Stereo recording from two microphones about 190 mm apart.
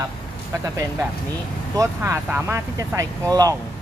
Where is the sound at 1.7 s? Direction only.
15° right (ahead or behind).